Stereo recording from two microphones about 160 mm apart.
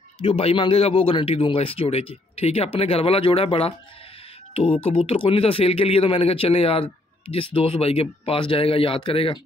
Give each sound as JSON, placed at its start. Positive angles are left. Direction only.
{"t": 0.2, "sound": "speech", "side_deg": 35}
{"t": 4.8, "sound": "speech", "side_deg": 35}